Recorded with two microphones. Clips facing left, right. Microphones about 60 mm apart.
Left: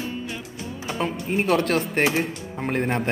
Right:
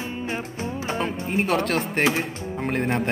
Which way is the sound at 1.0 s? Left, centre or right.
Centre.